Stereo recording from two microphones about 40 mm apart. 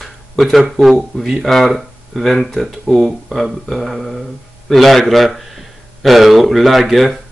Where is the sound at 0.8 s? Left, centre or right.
Centre.